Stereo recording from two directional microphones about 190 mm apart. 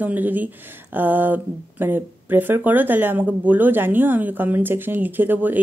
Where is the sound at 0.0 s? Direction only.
10° right (ahead or behind).